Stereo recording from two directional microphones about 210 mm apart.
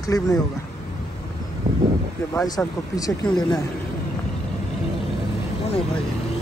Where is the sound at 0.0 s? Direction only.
15° left (ahead or behind).